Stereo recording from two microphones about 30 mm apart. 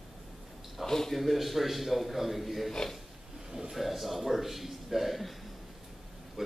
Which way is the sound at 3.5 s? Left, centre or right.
Centre.